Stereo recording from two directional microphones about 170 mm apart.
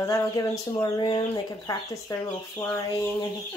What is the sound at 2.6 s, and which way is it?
Chicken, 15° left (ahead or behind).